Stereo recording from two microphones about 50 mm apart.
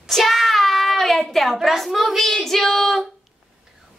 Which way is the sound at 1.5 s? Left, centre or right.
Centre.